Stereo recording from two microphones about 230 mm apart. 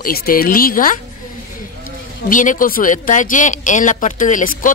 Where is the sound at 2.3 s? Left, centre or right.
Left.